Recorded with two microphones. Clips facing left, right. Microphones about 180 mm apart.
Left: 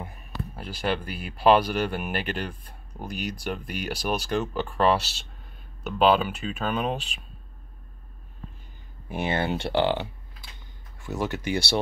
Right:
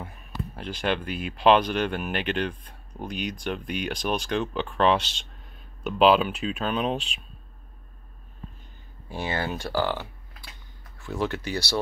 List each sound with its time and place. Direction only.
0.6 s speech: 5° left (ahead or behind)
9.1 s speech: 25° left (ahead or behind)
11.1 s speech: 15° left (ahead or behind)